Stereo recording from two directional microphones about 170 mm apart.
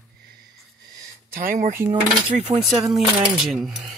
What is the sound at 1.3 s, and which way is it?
Speech, 50° right (ahead or behind).